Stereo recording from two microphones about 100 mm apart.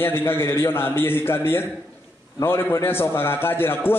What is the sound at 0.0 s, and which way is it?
A man's voice, 25° left (ahead or behind).